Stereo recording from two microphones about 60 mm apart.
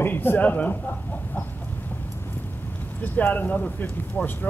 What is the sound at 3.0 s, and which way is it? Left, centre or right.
Speech, left.